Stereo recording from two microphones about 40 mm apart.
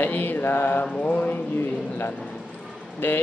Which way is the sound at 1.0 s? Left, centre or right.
Left.